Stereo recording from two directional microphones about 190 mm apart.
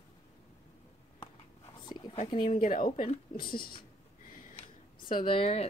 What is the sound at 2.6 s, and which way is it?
Speech, 45° left (ahead or behind).